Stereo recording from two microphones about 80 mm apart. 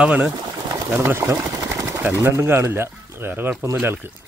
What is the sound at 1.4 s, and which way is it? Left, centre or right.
Speech, right.